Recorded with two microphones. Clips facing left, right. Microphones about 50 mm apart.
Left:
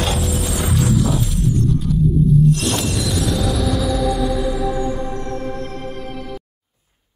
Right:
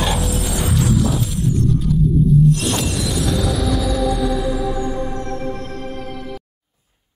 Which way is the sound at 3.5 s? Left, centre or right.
Right.